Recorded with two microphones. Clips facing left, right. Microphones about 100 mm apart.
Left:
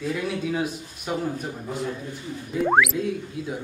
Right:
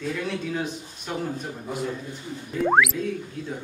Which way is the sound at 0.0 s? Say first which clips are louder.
Left 2 dB; 5° left (ahead or behind).